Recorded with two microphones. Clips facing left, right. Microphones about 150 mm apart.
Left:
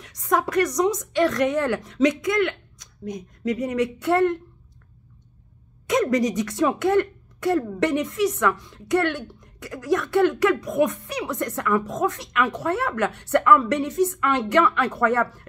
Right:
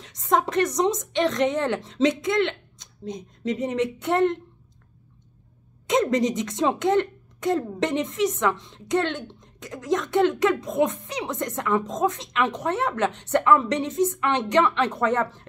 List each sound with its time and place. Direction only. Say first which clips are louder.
0.0 s speech: even; 25° right (ahead or behind)
5.9 s speech: even; 25° right (ahead or behind)